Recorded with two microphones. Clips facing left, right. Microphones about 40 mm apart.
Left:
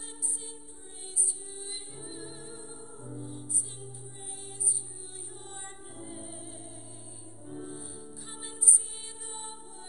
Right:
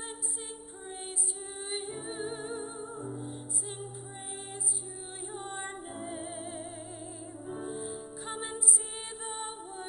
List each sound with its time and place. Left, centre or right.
1.6 s music: right
5.3 s music: right